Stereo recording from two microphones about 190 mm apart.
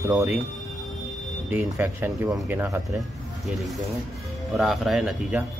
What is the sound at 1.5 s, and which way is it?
Speech, 10° right (ahead or behind).